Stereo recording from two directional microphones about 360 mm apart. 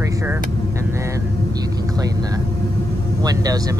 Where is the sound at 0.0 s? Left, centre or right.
Centre.